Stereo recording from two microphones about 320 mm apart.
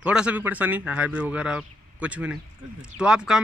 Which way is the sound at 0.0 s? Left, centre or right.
Centre.